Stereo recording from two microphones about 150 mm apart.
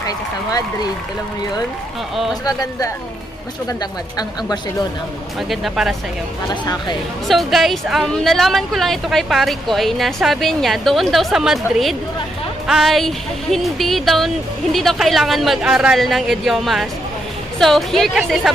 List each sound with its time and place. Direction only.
0.0 s speech: 25° left (ahead or behind)
2.4 s speech: 25° left (ahead or behind)
5.5 s a woman's voice: centre (ahead or behind)
6.5 s speech: 30° left (ahead or behind)
7.2 s a woman's voice: centre (ahead or behind)